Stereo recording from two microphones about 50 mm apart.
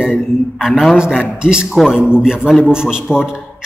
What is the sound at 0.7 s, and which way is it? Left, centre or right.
Speech, centre.